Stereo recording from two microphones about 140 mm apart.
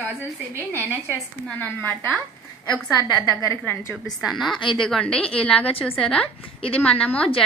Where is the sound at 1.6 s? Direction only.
15° left (ahead or behind).